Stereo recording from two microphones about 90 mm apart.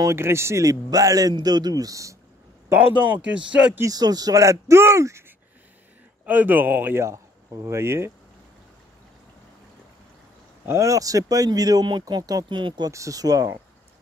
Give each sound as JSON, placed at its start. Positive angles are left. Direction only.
{"t": 0.1, "sound": "speech", "side_deg": -30}
{"t": 2.7, "sound": "speech", "side_deg": -20}
{"t": 3.8, "sound": "speech", "side_deg": -45}
{"t": 6.2, "sound": "speech", "side_deg": -20}
{"t": 10.6, "sound": "speech", "side_deg": -30}
{"t": 12.4, "sound": "speech", "side_deg": -60}
{"t": 12.9, "sound": "speech", "side_deg": -40}